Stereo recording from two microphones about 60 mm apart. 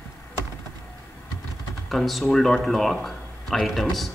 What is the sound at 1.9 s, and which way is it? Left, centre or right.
Speech, centre.